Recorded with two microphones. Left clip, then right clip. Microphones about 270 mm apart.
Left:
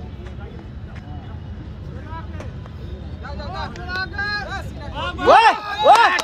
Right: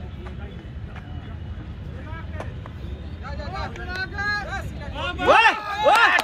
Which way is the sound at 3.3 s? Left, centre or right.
Left.